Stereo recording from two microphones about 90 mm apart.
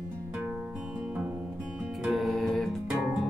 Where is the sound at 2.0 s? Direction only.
Centre (ahead or behind).